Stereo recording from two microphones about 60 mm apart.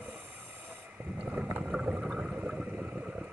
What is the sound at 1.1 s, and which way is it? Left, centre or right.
Boat, centre.